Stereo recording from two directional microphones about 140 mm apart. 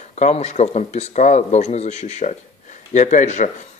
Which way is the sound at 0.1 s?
55° left (ahead or behind).